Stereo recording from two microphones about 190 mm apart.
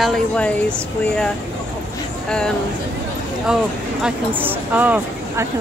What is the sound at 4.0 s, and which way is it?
Speech, 10° right (ahead or behind).